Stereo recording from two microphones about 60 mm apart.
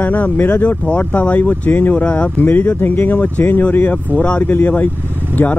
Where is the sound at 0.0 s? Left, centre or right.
Left.